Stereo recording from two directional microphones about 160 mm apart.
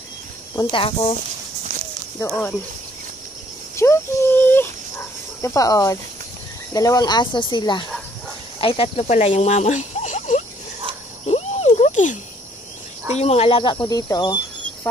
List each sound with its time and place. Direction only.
0.6 s speech: 30° left (ahead or behind)
2.1 s speech: 15° left (ahead or behind)
3.7 s dog: 15° left (ahead or behind)
6.7 s speech: 20° left (ahead or behind); by 10.4 s 50° left (ahead or behind)
11.2 s a sound: 45° left (ahead or behind)
13.1 s speech: 40° left (ahead or behind)
13.7 s speech: 20° left (ahead or behind)